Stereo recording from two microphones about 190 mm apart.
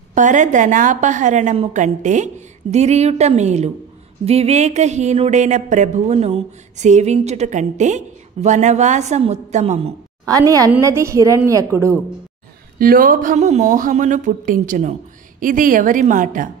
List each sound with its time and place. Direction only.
0.1 s speech: 40° right (ahead or behind)
10.2 s a woman's voice: 20° right (ahead or behind)
12.7 s speech: 50° right (ahead or behind)